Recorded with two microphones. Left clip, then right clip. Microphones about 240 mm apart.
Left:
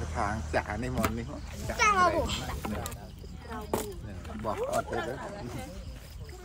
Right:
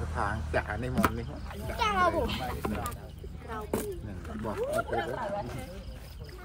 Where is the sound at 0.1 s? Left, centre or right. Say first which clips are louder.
Left 1 dB; left.